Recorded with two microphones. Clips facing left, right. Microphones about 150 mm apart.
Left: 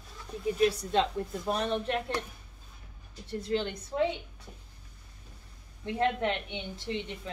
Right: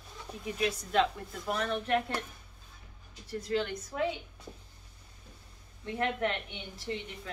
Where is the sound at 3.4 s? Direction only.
25° left (ahead or behind).